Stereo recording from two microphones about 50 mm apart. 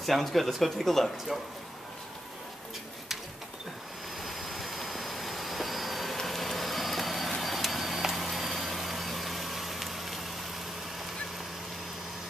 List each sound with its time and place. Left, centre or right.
0.0 s speech: centre
4.2 s vehicle: centre